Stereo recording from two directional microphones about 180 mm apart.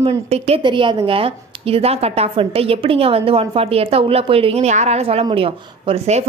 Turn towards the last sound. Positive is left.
turn(degrees=-35)  # may be behind; listen again after turning